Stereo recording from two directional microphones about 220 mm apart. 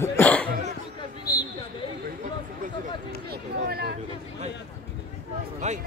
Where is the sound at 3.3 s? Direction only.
45° right (ahead or behind).